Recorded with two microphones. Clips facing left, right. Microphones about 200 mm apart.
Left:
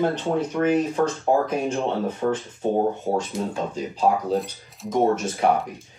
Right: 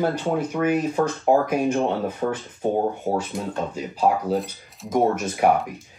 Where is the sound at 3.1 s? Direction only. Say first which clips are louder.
Even; 15° right (ahead or behind).